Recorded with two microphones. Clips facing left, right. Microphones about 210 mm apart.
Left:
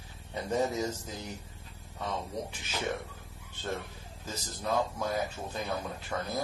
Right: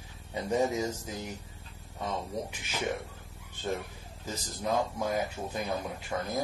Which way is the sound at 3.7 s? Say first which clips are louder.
Right 3 dB; 15° right (ahead or behind).